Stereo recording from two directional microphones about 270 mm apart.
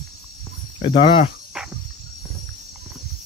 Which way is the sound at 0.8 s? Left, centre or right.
Centre.